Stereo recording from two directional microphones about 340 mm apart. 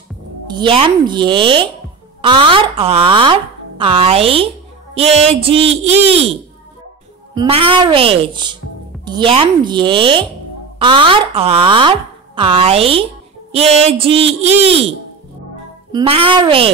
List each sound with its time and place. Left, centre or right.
0.5 s speech: centre
7.3 s speech: centre
15.9 s speech: centre